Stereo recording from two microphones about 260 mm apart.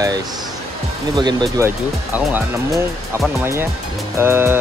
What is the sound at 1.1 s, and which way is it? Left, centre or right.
Speech, centre.